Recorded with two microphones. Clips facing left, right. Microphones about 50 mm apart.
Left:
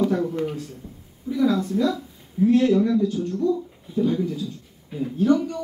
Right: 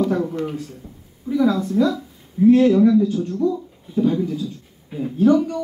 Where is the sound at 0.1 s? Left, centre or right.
Centre.